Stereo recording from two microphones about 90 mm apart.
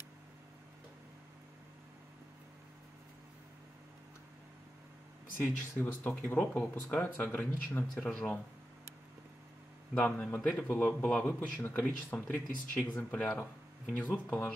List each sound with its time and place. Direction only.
5.4 s speech: 20° left (ahead or behind)
9.9 s speech: 20° left (ahead or behind)